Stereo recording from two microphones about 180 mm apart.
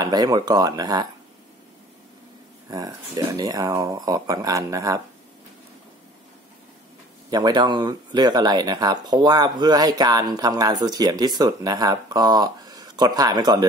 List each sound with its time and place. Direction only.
0.0 s speech: 20° right (ahead or behind)
2.7 s speech: 20° right (ahead or behind)
7.2 s speech: 20° right (ahead or behind)